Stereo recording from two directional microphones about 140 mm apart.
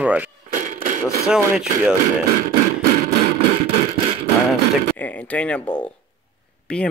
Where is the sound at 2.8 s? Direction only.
90° right.